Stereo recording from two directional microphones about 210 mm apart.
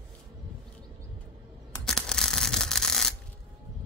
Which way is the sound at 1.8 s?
Centre (ahead or behind).